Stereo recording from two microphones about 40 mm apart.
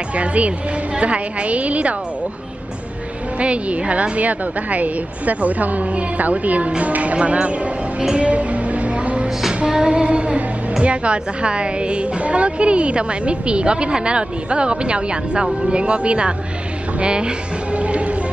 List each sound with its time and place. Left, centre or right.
0.1 s a woman's voice: right
3.3 s a woman's voice: right
8.2 s music: right
9.7 s a woman's voice: centre
17.7 s music: right